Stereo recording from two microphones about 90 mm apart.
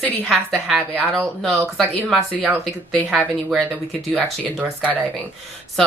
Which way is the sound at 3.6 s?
20° right (ahead or behind).